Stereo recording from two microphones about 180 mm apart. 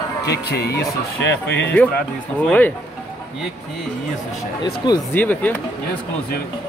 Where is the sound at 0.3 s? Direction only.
65° left (ahead or behind).